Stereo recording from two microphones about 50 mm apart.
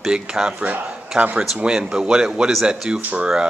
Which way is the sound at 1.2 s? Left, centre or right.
Right.